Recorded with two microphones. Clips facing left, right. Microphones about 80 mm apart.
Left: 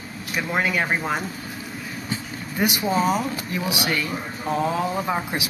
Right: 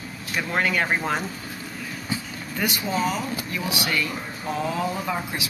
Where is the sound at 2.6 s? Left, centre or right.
Centre.